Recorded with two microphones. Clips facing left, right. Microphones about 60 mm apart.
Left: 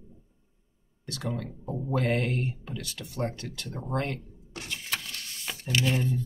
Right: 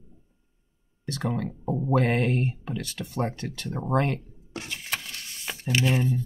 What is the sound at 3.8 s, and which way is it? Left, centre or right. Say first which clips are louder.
Speech: right 6 dB; right.